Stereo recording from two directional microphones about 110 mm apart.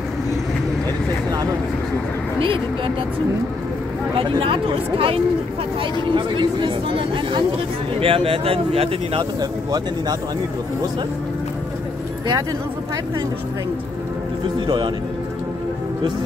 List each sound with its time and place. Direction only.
4.2 s speech: 55° right (ahead or behind)
9.4 s speech: 35° right (ahead or behind)